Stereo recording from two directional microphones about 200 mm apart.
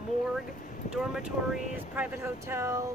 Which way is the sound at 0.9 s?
5° right (ahead or behind).